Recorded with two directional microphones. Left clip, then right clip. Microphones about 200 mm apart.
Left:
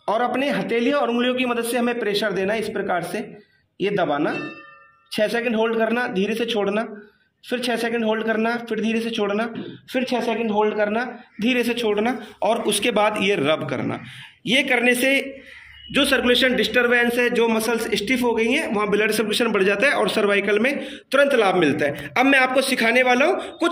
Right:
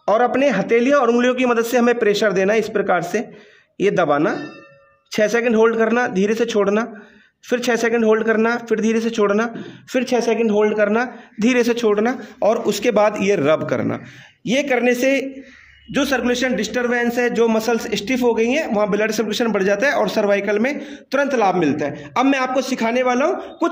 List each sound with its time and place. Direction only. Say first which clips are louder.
0.0 s a man's voice: right 6 dB; 45° right (ahead or behind)